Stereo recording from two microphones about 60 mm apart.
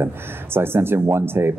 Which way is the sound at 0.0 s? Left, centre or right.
Right.